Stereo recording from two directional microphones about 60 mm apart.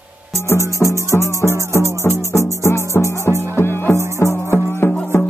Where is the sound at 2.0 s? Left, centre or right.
Left.